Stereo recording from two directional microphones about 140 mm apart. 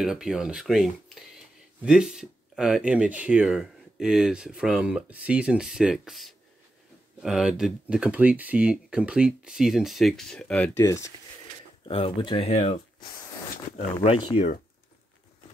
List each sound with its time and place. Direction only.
0.0 s speech: 5° right (ahead or behind)
10.8 s speech: 20° left (ahead or behind)
11.8 s speech: 40° left (ahead or behind)
14.3 s speech: 50° left (ahead or behind)